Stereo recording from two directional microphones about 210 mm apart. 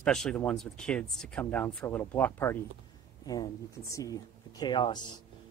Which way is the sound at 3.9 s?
15° left (ahead or behind).